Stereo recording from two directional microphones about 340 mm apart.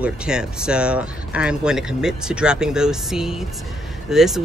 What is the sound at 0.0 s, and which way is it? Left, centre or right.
Speech, centre.